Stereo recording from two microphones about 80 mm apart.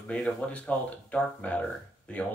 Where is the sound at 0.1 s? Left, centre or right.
Centre.